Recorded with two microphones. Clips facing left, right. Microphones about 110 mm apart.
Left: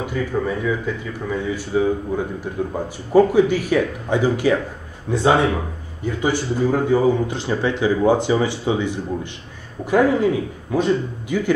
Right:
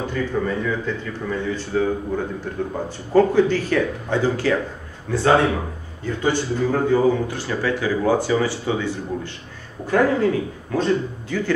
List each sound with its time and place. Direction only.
0.0 s speech: 10° left (ahead or behind)